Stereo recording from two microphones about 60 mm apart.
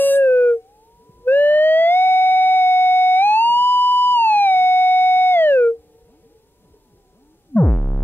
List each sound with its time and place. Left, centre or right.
0.0 s dog: left
1.2 s theremin: left
7.5 s synthesizer: left